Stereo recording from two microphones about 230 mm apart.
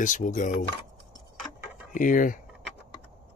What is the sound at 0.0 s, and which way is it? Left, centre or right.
Speech, left.